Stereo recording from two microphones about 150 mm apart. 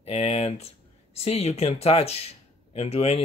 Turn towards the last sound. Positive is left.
turn(degrees=45)  # may be behind; listen again after turning